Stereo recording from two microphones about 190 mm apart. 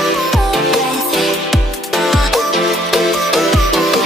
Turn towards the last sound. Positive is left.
turn(degrees=0)  # may be behind; listen again after turning